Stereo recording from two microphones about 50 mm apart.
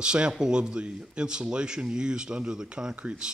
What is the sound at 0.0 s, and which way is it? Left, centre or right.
A man's voice, centre.